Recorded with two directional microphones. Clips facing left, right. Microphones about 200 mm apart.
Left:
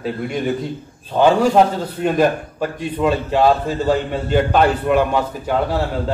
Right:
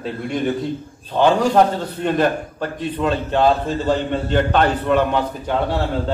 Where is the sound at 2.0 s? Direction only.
10° left (ahead or behind).